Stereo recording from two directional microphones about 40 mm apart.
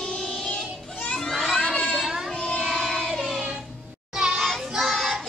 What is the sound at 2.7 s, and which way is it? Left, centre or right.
Child singing, centre.